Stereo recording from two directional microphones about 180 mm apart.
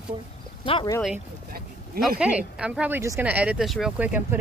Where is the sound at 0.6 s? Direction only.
30° left (ahead or behind).